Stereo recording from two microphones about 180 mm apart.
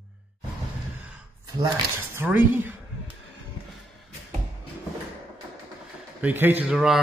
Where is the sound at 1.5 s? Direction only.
15° right (ahead or behind).